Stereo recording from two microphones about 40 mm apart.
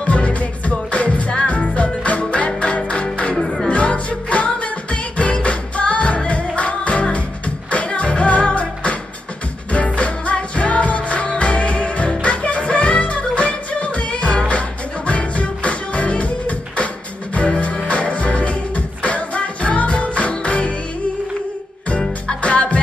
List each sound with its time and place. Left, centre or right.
0.0 s music: left
3.3 s music: centre
3.6 s music: left
22.4 s music: left